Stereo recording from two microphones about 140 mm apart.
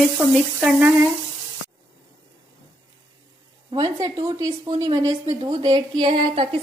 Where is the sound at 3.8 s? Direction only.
25° right (ahead or behind).